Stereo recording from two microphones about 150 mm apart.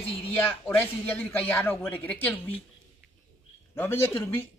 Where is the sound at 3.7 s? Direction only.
15° left (ahead or behind).